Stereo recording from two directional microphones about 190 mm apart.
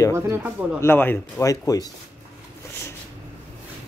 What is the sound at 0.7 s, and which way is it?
Speech, 10° left (ahead or behind).